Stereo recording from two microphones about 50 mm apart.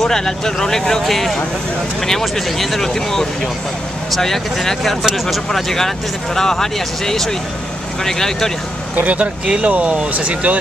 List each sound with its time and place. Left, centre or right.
0.0 s speech: centre
8.9 s speech: right